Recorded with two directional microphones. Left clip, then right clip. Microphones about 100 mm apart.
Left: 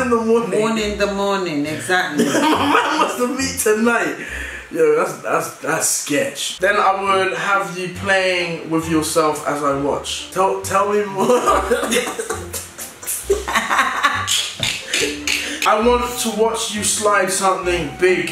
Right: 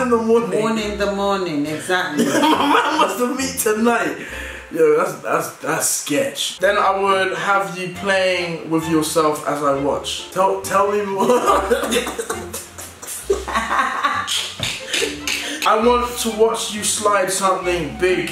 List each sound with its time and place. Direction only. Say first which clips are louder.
0.1 s speech: even; 5° right (ahead or behind)
2.1 s speech: even; 10° right (ahead or behind)
13.5 s laughter: left 2 dB; 20° left (ahead or behind)
14.9 s speech: even; centre (ahead or behind)